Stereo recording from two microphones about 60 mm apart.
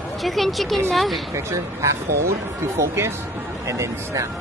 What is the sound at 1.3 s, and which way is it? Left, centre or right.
Speech, right.